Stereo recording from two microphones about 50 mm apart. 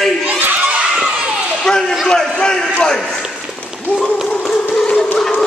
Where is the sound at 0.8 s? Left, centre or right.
Centre.